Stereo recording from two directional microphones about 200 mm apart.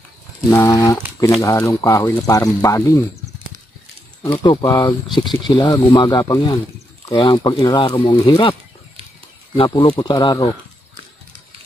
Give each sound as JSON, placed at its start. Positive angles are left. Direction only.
{"t": 0.5, "sound": "speech", "side_deg": 15}
{"t": 4.2, "sound": "speech", "side_deg": 15}
{"t": 9.6, "sound": "speech", "side_deg": 25}